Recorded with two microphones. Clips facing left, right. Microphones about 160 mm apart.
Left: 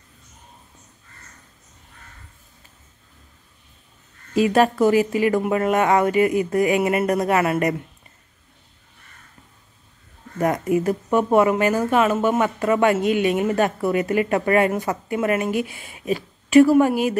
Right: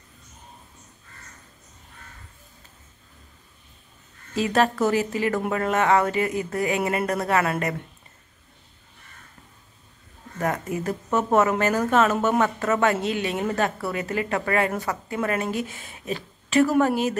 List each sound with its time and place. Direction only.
4.4 s speech: 15° left (ahead or behind)
10.4 s speech: 15° left (ahead or behind)